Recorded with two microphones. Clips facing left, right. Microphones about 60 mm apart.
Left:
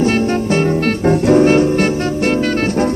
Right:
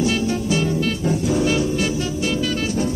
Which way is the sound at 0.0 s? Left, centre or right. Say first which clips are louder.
Left 6 dB; left.